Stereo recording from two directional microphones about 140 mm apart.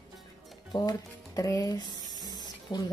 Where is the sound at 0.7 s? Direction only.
30° left (ahead or behind).